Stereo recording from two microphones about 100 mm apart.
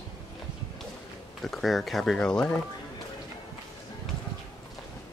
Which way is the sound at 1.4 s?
Centre (ahead or behind).